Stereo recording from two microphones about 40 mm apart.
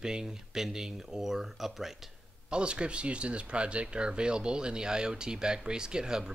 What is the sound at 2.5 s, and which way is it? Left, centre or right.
Speech, right.